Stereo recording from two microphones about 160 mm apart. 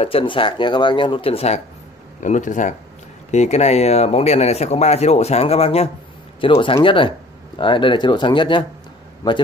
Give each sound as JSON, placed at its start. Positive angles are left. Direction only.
{"t": 0.0, "sound": "speech", "side_deg": 35}
{"t": 2.1, "sound": "a man's voice", "side_deg": 50}